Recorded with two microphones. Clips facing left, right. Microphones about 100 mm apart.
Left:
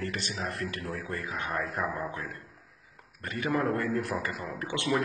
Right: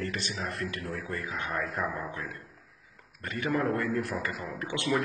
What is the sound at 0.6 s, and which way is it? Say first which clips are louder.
Speech: even; 35° left (ahead or behind).